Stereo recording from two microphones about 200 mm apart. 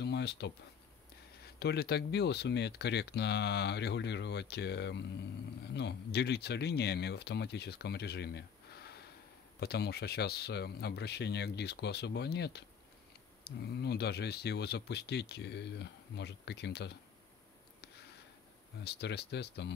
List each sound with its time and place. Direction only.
0.0 s a sound: 55° left (ahead or behind)
1.6 s speech: 55° left (ahead or behind)
18.9 s speech: 55° left (ahead or behind)